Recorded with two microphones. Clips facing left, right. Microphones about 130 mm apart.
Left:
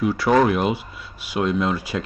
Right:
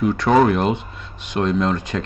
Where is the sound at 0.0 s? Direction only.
5° left (ahead or behind).